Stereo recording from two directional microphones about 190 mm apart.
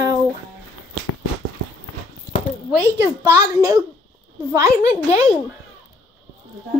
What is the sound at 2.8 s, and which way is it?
A child's voice, 15° right (ahead or behind).